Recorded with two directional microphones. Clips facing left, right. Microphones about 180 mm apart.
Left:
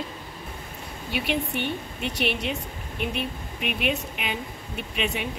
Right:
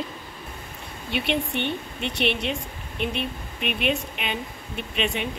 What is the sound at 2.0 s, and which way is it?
A woman's voice, 10° left (ahead or behind).